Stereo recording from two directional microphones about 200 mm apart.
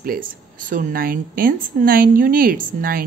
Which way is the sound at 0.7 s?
45° right (ahead or behind).